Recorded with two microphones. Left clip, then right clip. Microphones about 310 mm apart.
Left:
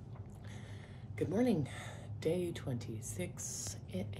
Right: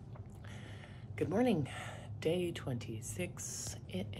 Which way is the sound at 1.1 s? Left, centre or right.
Centre.